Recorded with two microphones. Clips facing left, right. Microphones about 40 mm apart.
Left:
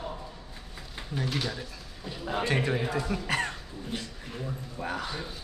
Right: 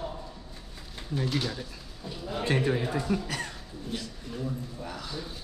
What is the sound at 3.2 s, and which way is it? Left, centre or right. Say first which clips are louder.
Throat clearing: left 5 dB; left.